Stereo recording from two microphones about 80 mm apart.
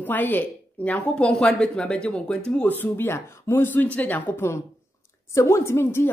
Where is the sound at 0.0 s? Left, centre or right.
Left.